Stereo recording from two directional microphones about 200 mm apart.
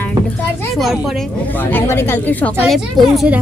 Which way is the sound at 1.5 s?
10° left (ahead or behind).